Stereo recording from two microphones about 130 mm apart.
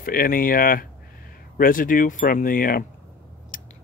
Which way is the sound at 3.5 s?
90° left.